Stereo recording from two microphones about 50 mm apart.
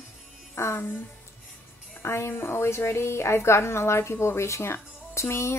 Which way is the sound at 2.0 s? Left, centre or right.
Left.